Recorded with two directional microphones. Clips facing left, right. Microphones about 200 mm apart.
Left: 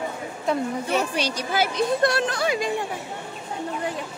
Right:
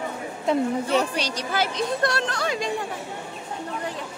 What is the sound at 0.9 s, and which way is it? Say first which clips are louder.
A woman's voice: right 1 dB; 10° left (ahead or behind).